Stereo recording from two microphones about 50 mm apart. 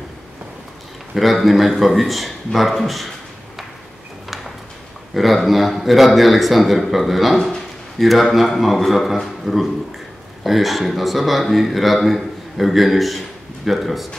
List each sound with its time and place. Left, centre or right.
1.1 s speech: centre
5.1 s speech: centre
7.3 s a sound: centre
8.0 s speech: centre